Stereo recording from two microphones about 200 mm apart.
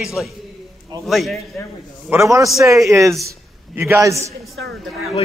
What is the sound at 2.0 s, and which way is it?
A man's voice, 15° right (ahead or behind).